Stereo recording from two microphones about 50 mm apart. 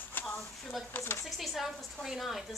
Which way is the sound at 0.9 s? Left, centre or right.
Left.